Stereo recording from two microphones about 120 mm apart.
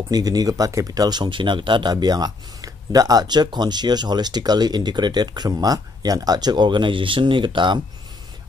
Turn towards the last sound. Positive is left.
turn(degrees=-40)  # may be behind; listen again after turning